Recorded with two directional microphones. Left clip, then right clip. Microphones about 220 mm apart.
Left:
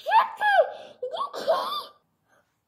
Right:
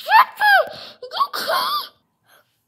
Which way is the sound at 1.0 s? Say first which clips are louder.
Right 9 dB; 40° right (ahead or behind).